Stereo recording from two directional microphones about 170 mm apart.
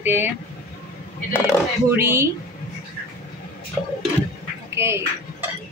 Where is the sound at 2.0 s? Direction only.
15° right (ahead or behind).